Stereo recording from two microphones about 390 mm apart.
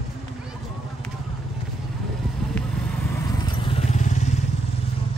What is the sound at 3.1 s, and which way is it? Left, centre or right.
Vehicle, centre.